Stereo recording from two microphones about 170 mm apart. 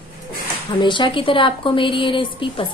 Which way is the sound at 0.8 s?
30° left (ahead or behind).